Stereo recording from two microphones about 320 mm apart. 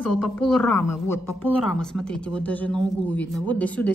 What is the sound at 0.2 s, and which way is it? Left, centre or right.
Speech, centre.